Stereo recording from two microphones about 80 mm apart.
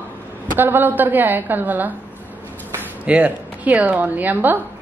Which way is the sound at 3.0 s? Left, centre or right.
Centre.